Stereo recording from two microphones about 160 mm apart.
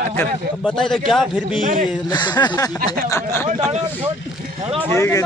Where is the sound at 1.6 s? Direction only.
50° right (ahead or behind).